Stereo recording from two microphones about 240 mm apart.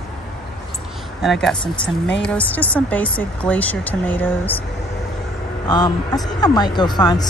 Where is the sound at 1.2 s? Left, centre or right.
Centre.